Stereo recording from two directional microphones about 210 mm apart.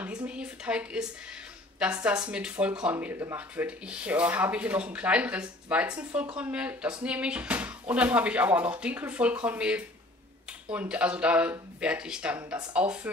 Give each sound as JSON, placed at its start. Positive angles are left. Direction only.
{"t": 0.0, "sound": "speech", "side_deg": -5}